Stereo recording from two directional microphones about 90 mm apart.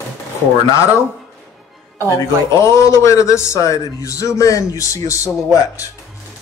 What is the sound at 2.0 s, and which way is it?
A man's voice, 35° left (ahead or behind).